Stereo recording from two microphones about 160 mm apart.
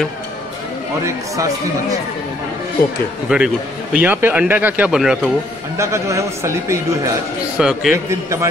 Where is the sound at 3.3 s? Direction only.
5° right (ahead or behind).